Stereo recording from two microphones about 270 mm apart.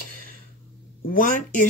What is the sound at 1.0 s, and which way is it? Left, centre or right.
Speech, left.